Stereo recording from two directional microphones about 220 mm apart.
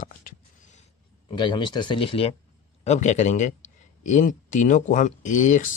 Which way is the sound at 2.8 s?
30° left (ahead or behind).